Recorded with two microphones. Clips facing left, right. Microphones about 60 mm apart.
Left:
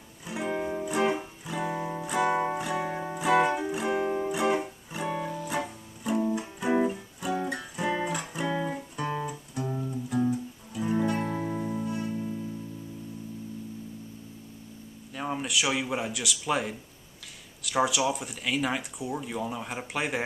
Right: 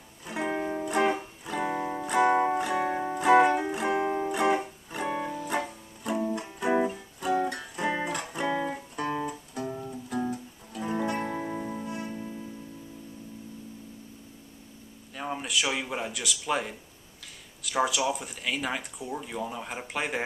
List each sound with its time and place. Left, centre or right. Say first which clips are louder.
0.5 s music: even; centre
1.6 s music: right 1 dB; centre
3.8 s music: left 1 dB; right
5.0 s music: even; centre
15.1 s speech: left 1 dB; centre